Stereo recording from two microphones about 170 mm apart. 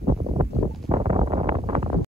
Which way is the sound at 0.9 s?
35° right (ahead or behind).